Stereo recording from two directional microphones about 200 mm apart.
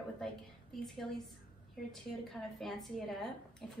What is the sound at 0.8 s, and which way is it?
A woman's voice, centre (ahead or behind).